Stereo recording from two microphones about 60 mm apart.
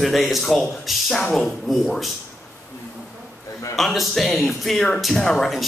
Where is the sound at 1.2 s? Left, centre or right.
Centre.